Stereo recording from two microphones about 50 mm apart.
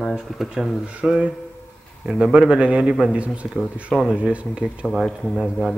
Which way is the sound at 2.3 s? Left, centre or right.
Centre.